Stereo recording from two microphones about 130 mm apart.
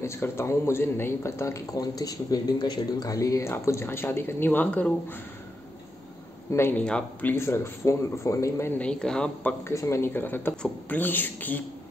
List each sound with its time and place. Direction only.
0.0 s a man's voice: 20° left (ahead or behind)
6.5 s speech: 15° left (ahead or behind)
9.8 s speech: 20° left (ahead or behind)